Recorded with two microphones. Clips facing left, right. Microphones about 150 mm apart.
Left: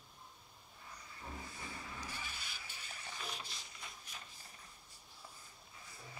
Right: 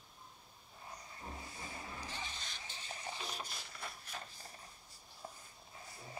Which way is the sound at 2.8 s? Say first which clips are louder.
Right 4 dB; 30° right (ahead or behind).